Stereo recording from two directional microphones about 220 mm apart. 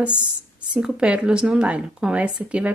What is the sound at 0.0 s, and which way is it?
A woman's voice, 5° right (ahead or behind).